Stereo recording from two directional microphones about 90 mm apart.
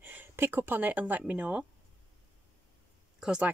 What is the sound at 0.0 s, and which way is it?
Speech, 20° right (ahead or behind).